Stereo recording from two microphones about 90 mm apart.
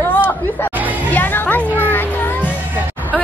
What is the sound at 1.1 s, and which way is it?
Music, 20° left (ahead or behind).